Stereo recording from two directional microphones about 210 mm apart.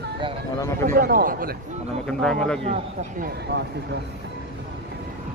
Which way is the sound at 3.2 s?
50° right (ahead or behind).